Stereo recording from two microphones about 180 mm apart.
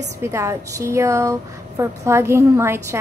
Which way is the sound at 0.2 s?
15° right (ahead or behind).